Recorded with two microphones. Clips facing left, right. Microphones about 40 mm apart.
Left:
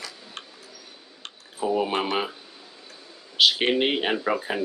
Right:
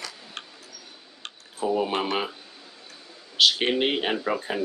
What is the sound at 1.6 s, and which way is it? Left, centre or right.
Speech, centre.